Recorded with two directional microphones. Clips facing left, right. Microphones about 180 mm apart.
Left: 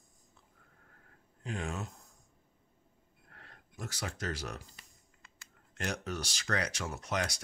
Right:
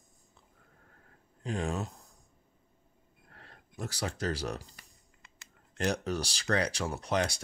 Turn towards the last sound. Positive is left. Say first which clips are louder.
# right 5 dB
turn(degrees=-30)  # may be behind; listen again after turning